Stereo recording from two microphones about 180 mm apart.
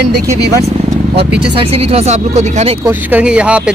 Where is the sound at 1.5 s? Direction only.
30° right (ahead or behind).